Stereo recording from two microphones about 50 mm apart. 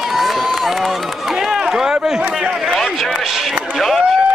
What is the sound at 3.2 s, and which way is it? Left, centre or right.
Speech, centre.